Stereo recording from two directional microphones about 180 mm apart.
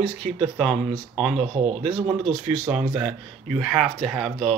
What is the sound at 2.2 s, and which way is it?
Speech, centre (ahead or behind).